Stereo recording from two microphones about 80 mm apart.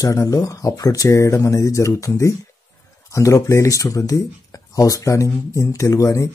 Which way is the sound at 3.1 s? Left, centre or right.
Left.